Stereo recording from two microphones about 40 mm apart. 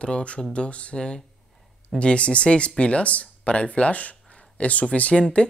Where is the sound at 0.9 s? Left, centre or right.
Centre; by 5.1 s left.